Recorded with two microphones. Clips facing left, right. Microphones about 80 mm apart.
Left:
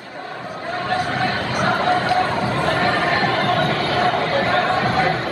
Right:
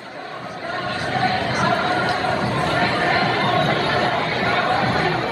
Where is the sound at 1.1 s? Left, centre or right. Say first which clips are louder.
Right 1 dB; right.